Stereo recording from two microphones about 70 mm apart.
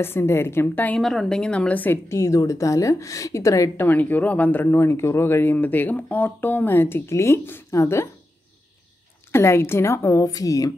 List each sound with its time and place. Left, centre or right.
0.0 s a woman's voice: left
0.9 s a woman's voice: centre
2.0 s a woman's voice: left
3.7 s speech: left
7.7 s a woman's voice: left
9.3 s a woman's voice: left
10.2 s speech: left